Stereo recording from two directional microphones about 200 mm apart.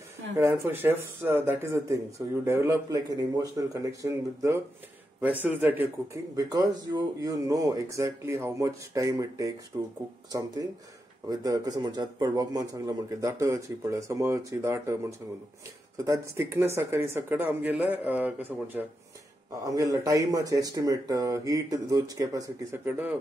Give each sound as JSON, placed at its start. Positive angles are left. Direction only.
{"t": 0.4, "sound": "speech", "side_deg": -10}
{"t": 11.2, "sound": "speech", "side_deg": -20}